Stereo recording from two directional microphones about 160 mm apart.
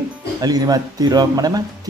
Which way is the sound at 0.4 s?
25° right (ahead or behind).